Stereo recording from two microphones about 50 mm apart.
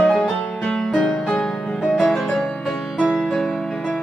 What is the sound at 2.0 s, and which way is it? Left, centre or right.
Music, centre.